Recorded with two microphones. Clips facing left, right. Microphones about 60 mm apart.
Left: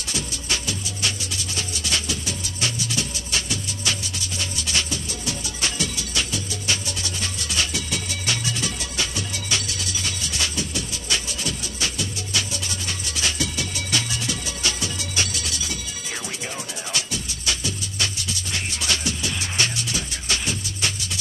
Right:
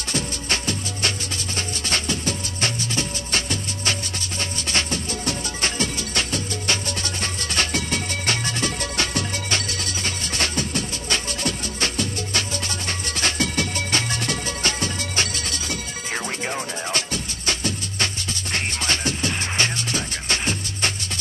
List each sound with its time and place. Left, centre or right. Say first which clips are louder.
0.1 s music: right 3 dB; right